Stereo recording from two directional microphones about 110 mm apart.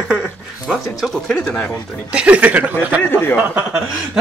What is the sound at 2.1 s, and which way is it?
Speech, 10° right (ahead or behind).